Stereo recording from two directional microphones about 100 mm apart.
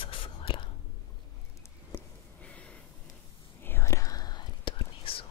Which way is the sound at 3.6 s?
25° left (ahead or behind).